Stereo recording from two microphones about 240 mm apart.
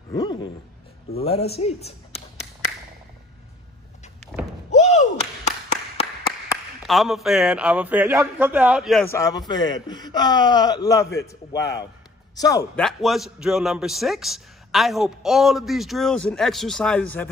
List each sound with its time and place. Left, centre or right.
0.1 s a sound: centre
1.2 s speech: left
4.6 s a sound: left
6.9 s a man's voice: centre
9.0 s speech: centre
12.8 s a man's voice: centre